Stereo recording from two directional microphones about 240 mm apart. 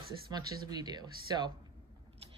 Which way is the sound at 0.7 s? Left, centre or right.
Centre.